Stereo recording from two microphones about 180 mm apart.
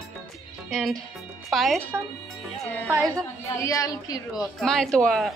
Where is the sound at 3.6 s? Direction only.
15° left (ahead or behind).